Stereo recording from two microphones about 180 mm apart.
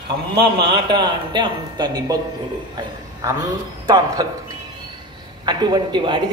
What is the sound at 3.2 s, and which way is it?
A woman's voice, 20° right (ahead or behind).